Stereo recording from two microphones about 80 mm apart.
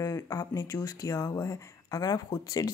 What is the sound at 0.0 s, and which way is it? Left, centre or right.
A woman's voice, left.